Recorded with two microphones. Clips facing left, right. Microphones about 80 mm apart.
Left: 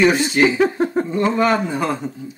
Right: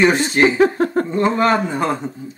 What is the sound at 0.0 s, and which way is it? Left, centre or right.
Speech, right.